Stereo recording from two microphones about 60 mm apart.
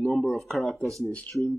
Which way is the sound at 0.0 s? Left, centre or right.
Centre.